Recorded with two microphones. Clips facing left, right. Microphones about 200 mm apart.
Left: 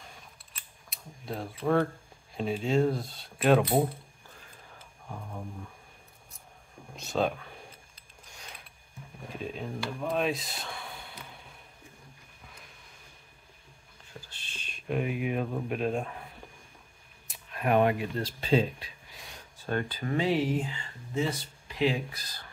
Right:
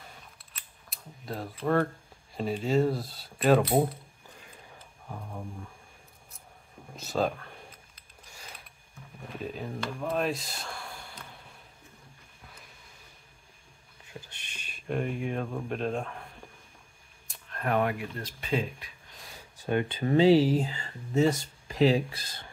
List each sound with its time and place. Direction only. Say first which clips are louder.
0.8 s speech: even; centre (ahead or behind)
5.0 s speech: even; centre (ahead or behind)
7.0 s speech: even; centre (ahead or behind)
8.3 s a sound: even; 5° right (ahead or behind)
9.4 s speech: even; centre (ahead or behind)
14.3 s a sound: left 1 dB; 15° right (ahead or behind)
14.9 s speech: left 1 dB; 5° left (ahead or behind)
17.3 s a sound: left 1 dB; 5° left (ahead or behind)
17.6 s speech: left 3 dB; 20° left (ahead or behind)
19.1 s a sound: even; centre (ahead or behind)
19.5 s speech: right 3 dB; 15° right (ahead or behind)
20.0 s speech: right 9 dB; 30° right (ahead or behind)